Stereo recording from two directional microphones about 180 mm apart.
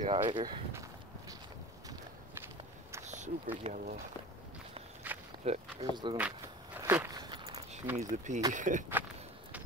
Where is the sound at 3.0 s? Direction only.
40° right (ahead or behind).